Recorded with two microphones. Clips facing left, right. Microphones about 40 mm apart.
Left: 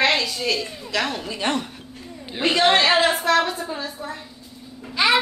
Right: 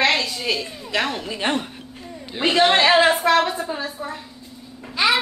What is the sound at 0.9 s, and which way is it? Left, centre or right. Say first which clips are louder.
Speech: right 1 dB; right.